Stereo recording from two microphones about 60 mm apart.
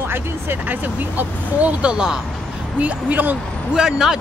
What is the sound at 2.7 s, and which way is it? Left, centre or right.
Speech, right.